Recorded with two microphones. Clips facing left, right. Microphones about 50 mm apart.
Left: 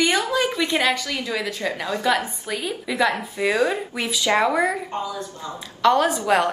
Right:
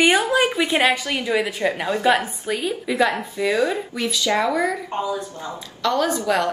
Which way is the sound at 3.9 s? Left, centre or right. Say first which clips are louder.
Left 1 dB; centre.